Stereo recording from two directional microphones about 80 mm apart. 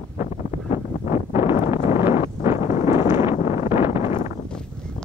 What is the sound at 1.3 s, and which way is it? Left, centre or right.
Wind noise, right.